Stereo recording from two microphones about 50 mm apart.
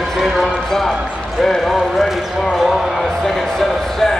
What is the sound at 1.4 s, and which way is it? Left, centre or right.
Clip-clop, centre.